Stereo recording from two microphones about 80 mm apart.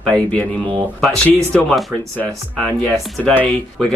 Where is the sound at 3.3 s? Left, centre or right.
Left.